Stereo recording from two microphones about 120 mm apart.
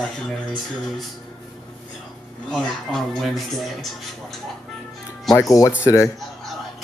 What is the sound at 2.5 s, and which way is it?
Speech, centre (ahead or behind).